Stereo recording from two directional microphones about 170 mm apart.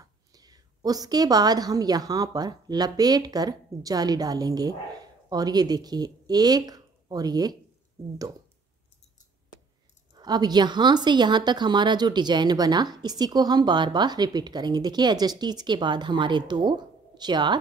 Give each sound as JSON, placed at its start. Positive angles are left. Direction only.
{"t": 0.0, "sound": "a woman's voice", "side_deg": -20}
{"t": 10.1, "sound": "speech", "side_deg": -25}